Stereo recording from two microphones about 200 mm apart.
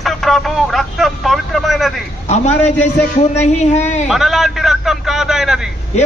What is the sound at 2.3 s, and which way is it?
A man's voice, 35° left (ahead or behind).